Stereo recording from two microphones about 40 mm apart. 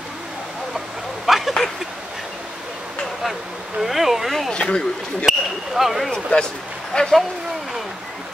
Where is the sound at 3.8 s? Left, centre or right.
Centre.